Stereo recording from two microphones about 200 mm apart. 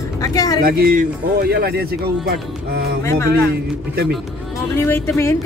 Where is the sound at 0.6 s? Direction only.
45° right (ahead or behind).